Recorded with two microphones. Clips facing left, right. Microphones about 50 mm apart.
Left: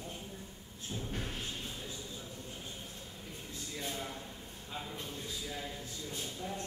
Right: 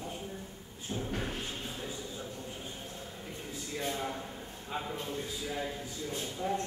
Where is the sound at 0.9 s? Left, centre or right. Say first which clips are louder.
Right 5 dB; right.